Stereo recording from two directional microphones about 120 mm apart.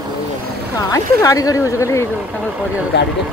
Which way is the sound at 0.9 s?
25° left (ahead or behind).